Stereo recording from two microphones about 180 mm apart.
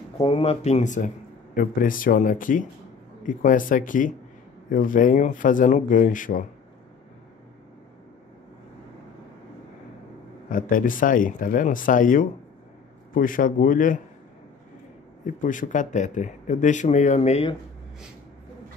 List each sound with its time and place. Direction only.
0.2 s speech: 30° left (ahead or behind); by 6.4 s 45° left (ahead or behind)
10.5 s speech: 50° left (ahead or behind)
15.2 s speech: 45° left (ahead or behind)